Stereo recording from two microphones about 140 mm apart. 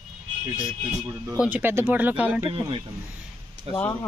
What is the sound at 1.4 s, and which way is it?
Speech, 15° right (ahead or behind).